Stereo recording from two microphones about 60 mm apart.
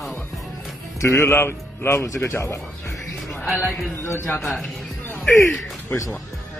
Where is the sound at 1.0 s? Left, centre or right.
Left.